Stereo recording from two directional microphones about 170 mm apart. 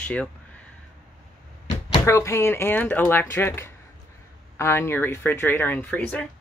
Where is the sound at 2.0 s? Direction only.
15° left (ahead or behind).